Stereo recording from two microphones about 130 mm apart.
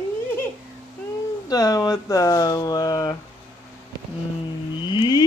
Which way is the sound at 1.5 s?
30° left (ahead or behind).